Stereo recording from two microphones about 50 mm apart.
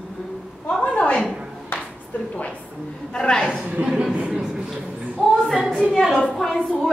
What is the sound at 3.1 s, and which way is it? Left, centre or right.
Speech, centre.